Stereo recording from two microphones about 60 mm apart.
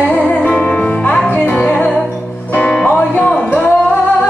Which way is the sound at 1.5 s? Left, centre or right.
Left.